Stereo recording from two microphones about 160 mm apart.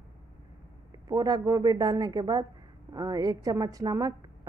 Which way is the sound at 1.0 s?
25° right (ahead or behind).